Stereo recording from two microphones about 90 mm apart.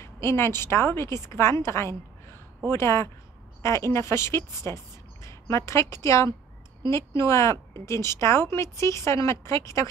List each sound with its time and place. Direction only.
0.0 s speech: 30° left (ahead or behind)